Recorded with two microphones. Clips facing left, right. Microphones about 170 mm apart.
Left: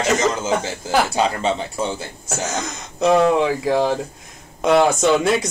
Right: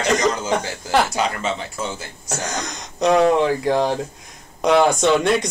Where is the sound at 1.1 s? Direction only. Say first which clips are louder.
Left 3 dB; 30° left (ahead or behind).